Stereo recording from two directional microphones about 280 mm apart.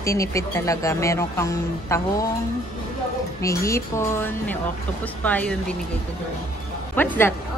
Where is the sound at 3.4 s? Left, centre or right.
Centre.